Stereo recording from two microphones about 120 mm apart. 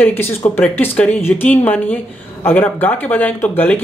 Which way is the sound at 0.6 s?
15° left (ahead or behind).